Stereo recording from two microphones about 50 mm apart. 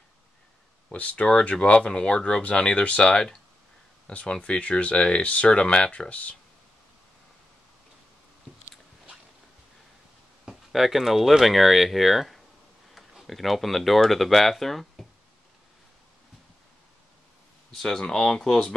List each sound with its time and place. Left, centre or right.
0.9 s speech: left
10.4 s speech: centre
17.6 s speech: centre